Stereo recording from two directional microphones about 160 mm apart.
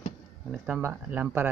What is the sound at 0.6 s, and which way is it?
Speech, 15° right (ahead or behind).